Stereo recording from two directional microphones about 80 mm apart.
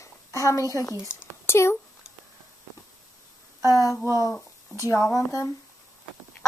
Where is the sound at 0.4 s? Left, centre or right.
Left.